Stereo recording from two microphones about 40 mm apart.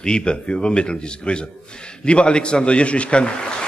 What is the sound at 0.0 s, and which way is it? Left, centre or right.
A man's voice, left.